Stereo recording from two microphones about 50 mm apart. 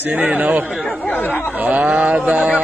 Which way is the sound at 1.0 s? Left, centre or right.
Left.